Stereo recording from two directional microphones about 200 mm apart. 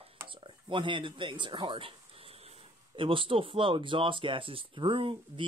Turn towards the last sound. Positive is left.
turn(degrees=-25)  # may be behind; listen again after turning